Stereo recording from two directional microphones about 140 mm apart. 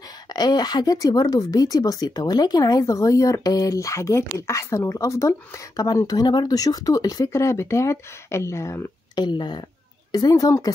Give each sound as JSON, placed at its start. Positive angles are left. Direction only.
{"t": 0.3, "sound": "speech", "side_deg": 30}
{"t": 9.2, "sound": "speech", "side_deg": 30}